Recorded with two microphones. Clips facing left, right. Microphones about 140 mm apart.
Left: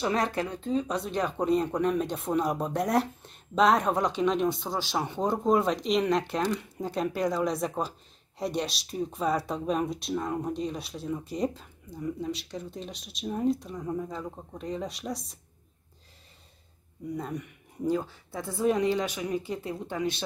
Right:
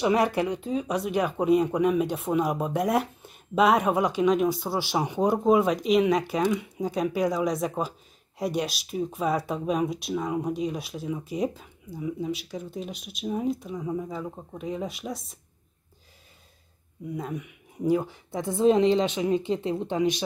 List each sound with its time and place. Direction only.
0.0 s speech: 10° right (ahead or behind)
17.1 s a woman's voice: 5° right (ahead or behind)